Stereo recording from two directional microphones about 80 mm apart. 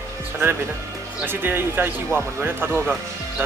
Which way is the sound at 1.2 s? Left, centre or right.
Right.